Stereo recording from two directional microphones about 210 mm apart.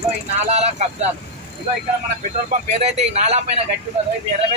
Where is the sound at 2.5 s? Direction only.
30° right (ahead or behind).